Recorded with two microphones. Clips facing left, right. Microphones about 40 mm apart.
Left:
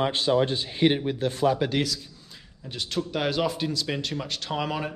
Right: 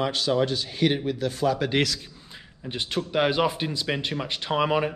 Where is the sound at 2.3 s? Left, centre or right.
Right.